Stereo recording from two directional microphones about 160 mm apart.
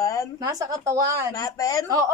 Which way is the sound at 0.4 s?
20° right (ahead or behind).